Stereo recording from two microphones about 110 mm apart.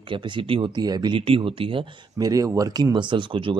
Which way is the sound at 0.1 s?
45° right (ahead or behind).